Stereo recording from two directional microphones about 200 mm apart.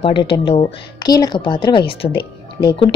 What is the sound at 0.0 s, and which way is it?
Speech, 25° left (ahead or behind).